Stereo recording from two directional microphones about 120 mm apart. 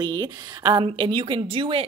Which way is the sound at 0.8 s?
45° right (ahead or behind).